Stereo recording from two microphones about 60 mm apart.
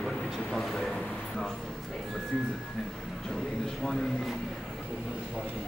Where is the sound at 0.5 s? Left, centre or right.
Centre.